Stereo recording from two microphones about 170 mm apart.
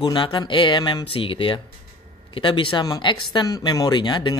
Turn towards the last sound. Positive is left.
turn(degrees=25)  # may be behind; listen again after turning